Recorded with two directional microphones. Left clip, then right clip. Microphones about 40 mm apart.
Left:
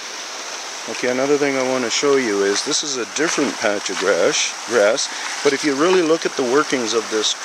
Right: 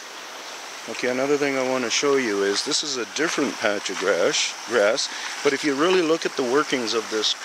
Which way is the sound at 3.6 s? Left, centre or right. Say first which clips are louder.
Left 4 dB; right.